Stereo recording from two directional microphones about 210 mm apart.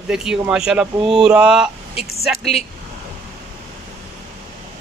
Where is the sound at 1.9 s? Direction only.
30° left (ahead or behind).